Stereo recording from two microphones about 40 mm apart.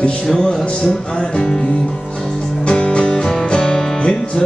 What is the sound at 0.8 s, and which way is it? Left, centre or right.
Music, centre.